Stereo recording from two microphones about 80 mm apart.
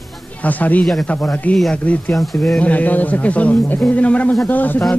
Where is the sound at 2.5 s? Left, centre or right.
Centre.